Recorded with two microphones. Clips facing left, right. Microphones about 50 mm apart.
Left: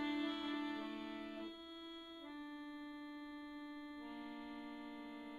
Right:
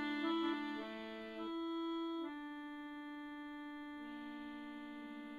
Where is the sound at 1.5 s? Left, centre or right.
Right.